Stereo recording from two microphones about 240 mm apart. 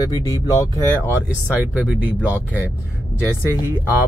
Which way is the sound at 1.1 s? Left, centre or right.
Centre.